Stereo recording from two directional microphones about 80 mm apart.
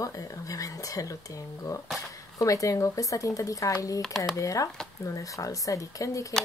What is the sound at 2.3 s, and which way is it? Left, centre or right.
Speech, left.